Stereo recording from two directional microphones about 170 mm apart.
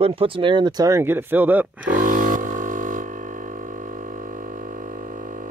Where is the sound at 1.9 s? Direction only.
50° right (ahead or behind).